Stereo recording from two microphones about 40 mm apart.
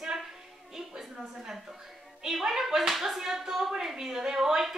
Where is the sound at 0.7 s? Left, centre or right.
Centre.